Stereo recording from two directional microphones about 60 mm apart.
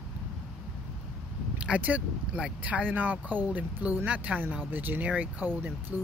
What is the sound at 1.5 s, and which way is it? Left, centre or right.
Speech, centre.